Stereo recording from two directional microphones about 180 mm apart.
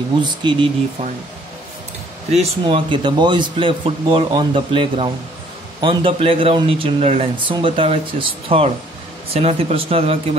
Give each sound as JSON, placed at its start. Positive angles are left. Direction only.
{"t": 0.2, "sound": "speech", "side_deg": -25}
{"t": 2.3, "sound": "speech", "side_deg": -30}